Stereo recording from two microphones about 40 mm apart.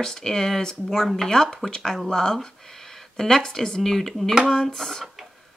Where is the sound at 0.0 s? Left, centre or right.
Centre.